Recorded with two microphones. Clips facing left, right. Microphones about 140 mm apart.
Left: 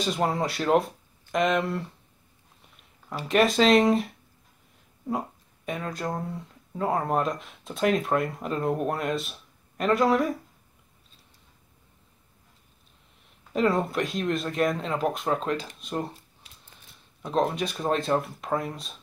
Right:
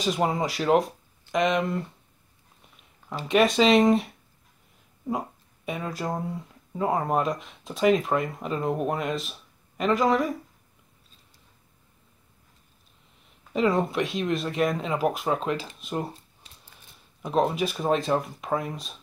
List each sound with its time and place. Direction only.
0.0 s speech: centre (ahead or behind)
5.7 s speech: centre (ahead or behind)
13.5 s speech: centre (ahead or behind)
17.2 s speech: 5° right (ahead or behind)